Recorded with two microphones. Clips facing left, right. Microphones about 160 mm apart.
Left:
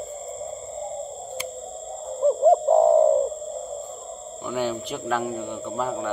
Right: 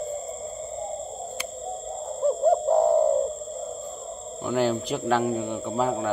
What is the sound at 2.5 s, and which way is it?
Bird, 25° left (ahead or behind).